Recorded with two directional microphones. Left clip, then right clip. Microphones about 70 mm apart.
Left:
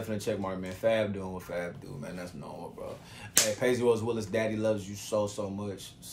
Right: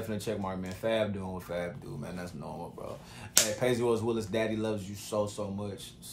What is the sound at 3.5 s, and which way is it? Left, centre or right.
Speech, right.